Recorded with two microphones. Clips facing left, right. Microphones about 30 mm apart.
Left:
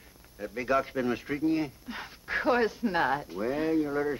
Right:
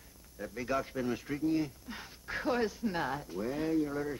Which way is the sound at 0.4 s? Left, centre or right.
Left.